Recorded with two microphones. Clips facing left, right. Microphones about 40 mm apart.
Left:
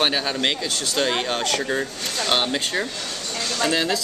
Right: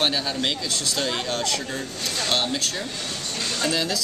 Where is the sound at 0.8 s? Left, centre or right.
Centre.